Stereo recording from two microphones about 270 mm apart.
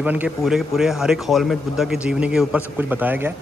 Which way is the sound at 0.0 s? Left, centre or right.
Centre.